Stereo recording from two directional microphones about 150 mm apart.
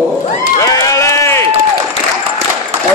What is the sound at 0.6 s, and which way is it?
Run, 20° left (ahead or behind).